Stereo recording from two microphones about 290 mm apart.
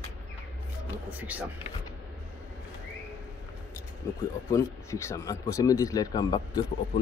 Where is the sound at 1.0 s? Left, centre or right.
Centre.